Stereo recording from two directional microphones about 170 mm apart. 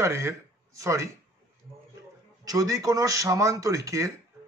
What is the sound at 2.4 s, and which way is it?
Speech, 20° right (ahead or behind).